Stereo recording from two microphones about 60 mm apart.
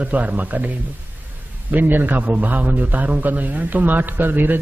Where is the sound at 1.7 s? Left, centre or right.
Right.